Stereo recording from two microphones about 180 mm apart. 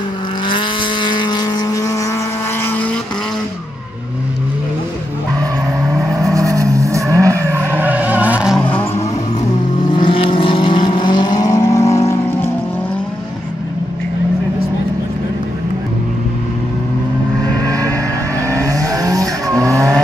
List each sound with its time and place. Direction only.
0.5 s vehicle: 25° left (ahead or behind)
5.4 s vehicle: 15° right (ahead or behind)
9.9 s vehicle: 30° left (ahead or behind); by 12.4 s 10° left (ahead or behind)
18.5 s vehicle: 20° right (ahead or behind)